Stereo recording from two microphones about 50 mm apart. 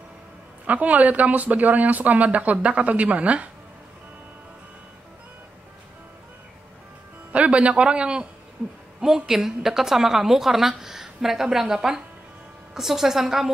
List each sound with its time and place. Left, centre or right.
0.7 s speech: right
7.3 s a woman's voice: right; by 13.5 s centre